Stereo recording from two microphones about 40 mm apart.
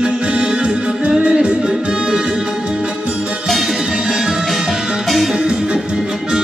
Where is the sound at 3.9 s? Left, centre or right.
Centre.